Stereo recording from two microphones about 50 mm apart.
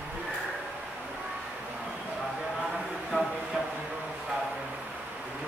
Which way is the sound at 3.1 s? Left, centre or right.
Left.